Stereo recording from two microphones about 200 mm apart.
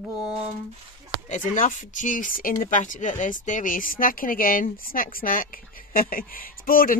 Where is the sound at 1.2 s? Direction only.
35° left (ahead or behind).